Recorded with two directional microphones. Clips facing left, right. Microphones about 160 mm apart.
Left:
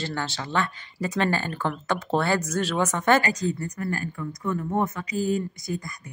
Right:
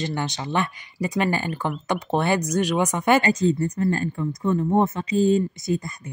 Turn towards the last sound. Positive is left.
turn(degrees=-25)  # may be behind; listen again after turning